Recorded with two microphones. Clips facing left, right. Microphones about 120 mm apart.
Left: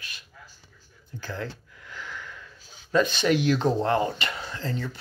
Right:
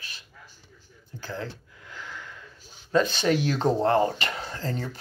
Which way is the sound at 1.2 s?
30° right (ahead or behind).